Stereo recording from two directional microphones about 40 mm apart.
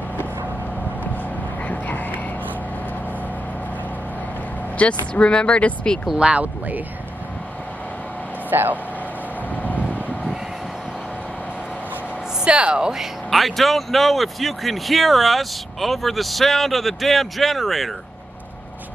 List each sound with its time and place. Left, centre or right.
1.6 s a sound: left
4.7 s speech: left
6.1 s a woman's voice: right
8.5 s speech: right
9.6 s vehicle: left
12.4 s a woman's voice: right
13.3 s speech: centre